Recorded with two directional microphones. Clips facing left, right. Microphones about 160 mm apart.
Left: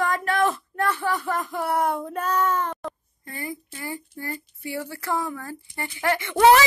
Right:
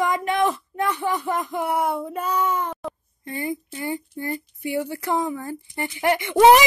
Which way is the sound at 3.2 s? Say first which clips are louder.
Right 6 dB; 20° right (ahead or behind).